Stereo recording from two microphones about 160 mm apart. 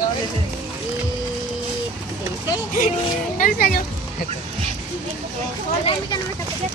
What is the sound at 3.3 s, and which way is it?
Speech, 60° left (ahead or behind).